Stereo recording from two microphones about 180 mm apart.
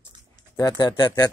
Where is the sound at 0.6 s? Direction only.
20° left (ahead or behind).